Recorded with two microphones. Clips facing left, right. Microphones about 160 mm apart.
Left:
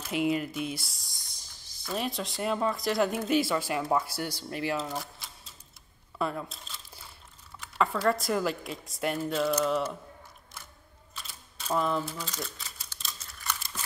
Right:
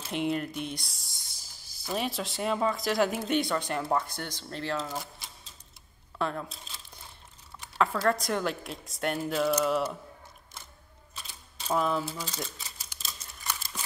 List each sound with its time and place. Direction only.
0.1 s speech: 5° left (ahead or behind)
6.1 s speech: 5° left (ahead or behind)
7.7 s speech: centre (ahead or behind)
11.7 s speech: 5° right (ahead or behind)
12.3 s typewriter: 20° right (ahead or behind)
13.4 s crumpling: 15° right (ahead or behind)